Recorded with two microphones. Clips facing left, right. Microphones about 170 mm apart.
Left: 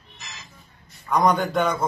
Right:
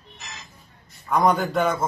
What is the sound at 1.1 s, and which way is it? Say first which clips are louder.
Speech: even; centre (ahead or behind).